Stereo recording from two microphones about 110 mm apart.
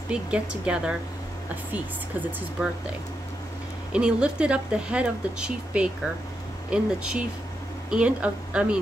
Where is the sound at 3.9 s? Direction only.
10° right (ahead or behind).